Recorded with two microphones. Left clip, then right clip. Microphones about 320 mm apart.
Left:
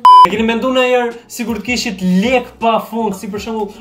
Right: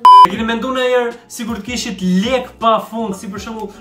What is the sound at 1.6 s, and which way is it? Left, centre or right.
Speech, right.